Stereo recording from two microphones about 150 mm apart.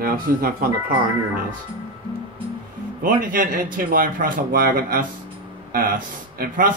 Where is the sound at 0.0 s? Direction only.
80° right.